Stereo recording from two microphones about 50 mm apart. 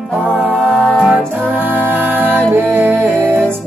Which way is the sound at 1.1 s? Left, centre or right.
Right.